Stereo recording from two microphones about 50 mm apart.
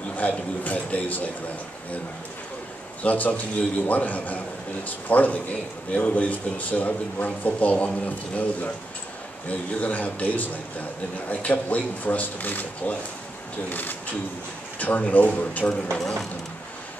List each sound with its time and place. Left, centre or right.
0.2 s a man's voice: left
3.0 s a man's voice: left
16.0 s speech: centre